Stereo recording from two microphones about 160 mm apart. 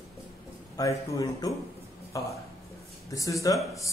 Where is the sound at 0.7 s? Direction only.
20° left (ahead or behind).